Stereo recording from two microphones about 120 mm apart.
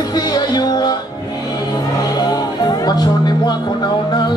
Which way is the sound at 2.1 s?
35° left (ahead or behind).